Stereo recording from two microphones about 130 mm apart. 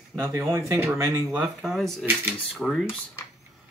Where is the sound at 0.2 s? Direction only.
20° right (ahead or behind).